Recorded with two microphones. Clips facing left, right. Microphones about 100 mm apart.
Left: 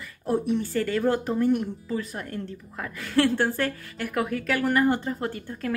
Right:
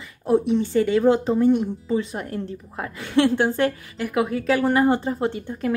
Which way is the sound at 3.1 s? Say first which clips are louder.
Right 4 dB; 15° right (ahead or behind).